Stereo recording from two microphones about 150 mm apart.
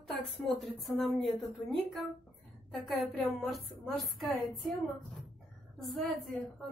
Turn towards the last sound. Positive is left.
turn(degrees=0)  # may be behind; listen again after turning